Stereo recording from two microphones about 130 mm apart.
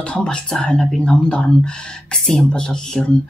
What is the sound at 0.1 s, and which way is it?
Speech, 5° left (ahead or behind).